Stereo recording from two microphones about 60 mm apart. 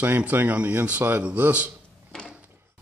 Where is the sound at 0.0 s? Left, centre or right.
Right.